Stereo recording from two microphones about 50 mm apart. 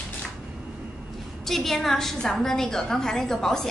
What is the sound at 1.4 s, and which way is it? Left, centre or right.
A woman's voice, centre.